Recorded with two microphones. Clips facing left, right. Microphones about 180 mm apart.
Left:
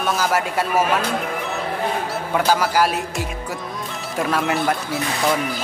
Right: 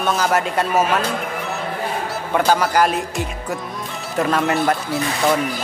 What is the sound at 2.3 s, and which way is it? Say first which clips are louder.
Speech: right 2 dB; 5° left (ahead or behind).